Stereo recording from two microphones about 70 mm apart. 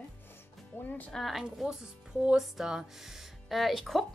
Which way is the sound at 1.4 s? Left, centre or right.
Centre.